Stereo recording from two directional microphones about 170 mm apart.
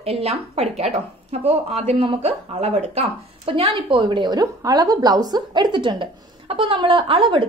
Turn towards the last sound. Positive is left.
turn(degrees=-30)  # may be behind; listen again after turning